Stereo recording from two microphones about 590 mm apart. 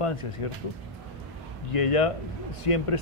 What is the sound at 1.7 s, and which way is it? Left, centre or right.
Speech, left.